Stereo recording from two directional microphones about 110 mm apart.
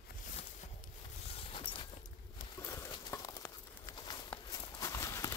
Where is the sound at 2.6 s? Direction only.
20° left (ahead or behind).